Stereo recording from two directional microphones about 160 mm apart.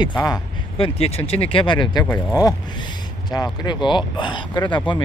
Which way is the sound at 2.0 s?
20° left (ahead or behind).